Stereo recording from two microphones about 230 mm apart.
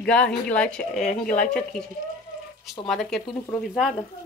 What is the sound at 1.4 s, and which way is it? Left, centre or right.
Speech, centre.